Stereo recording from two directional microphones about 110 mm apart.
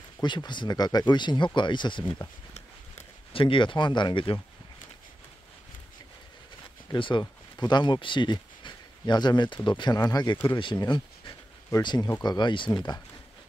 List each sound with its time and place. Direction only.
0.2 s speech: 45° left (ahead or behind)
3.3 s speech: 50° left (ahead or behind)
6.9 s speech: 45° left (ahead or behind)